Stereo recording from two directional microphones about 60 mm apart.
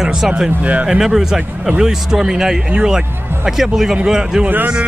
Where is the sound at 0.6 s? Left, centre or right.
Right.